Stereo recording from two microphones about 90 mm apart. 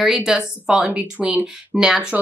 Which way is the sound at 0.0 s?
5° right (ahead or behind).